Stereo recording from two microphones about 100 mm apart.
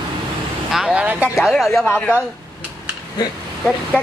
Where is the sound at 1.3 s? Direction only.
Centre (ahead or behind).